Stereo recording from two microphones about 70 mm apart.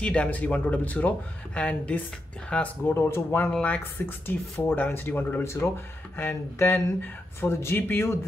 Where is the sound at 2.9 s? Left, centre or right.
Left.